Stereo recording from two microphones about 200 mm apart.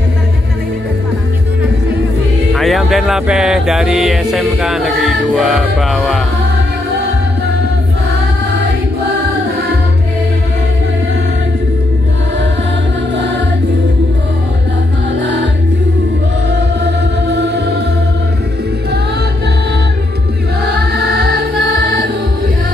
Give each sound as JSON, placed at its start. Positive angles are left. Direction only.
{"t": 2.5, "sound": "music", "side_deg": 0}
{"t": 16.4, "sound": "music", "side_deg": -55}
{"t": 20.9, "sound": "music", "side_deg": -55}